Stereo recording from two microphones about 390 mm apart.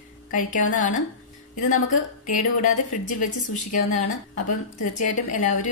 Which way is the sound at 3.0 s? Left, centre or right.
Centre.